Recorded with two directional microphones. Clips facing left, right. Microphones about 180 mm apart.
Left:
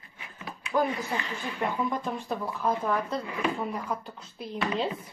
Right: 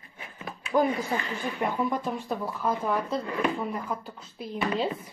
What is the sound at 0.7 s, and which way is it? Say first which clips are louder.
A woman's voice: right 3 dB; 15° right (ahead or behind).